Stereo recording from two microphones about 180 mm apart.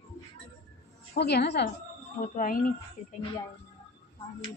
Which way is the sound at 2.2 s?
50° left (ahead or behind).